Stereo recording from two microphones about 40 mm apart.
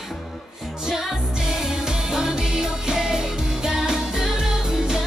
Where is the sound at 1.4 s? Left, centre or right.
Centre.